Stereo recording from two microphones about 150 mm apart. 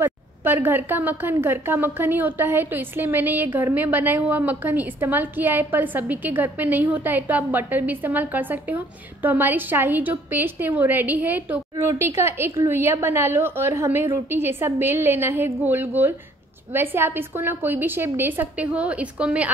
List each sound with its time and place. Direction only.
0.0 s a woman's voice: 15° right (ahead or behind)